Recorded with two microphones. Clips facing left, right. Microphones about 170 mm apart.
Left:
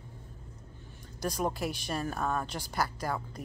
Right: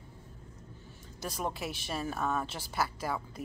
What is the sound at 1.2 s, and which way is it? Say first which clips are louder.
Speech: left 4 dB; centre (ahead or behind).